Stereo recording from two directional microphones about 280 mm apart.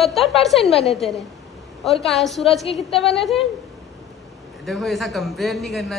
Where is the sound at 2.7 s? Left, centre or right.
Centre.